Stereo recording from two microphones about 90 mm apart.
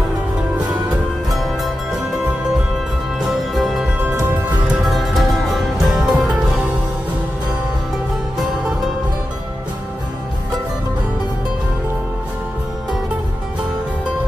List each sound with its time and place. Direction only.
1.3 s music: centre (ahead or behind)
3.2 s music: centre (ahead or behind)
4.8 s music: centre (ahead or behind)